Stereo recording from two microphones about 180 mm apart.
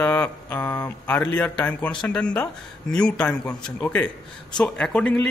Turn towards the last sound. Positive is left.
turn(degrees=5)  # may be behind; listen again after turning